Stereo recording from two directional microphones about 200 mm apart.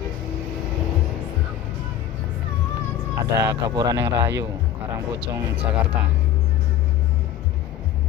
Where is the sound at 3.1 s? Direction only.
15° right (ahead or behind).